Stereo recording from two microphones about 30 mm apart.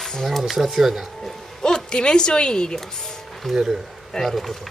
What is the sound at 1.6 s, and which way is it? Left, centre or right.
Speech, left.